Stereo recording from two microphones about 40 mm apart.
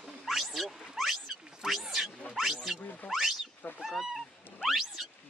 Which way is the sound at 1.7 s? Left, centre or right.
Centre.